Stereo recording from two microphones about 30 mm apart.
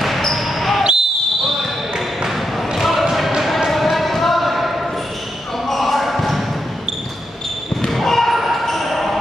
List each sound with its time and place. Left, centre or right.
0.3 s basketball bounce: centre
2.2 s basketball bounce: centre
7.9 s basketball bounce: centre